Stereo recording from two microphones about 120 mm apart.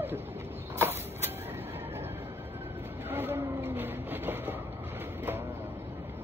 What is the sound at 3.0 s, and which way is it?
Vehicle, 20° right (ahead or behind).